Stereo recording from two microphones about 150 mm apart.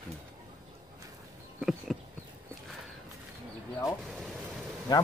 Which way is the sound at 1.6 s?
Centre (ahead or behind).